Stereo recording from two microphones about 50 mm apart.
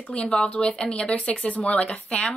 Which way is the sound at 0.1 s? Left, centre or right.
Centre.